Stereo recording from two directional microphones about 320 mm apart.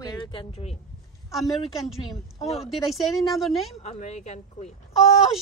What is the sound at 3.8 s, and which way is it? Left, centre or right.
Speech, left.